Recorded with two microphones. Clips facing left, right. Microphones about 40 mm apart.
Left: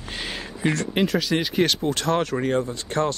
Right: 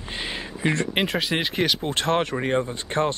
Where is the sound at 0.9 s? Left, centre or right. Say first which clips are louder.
Left 2 dB; right.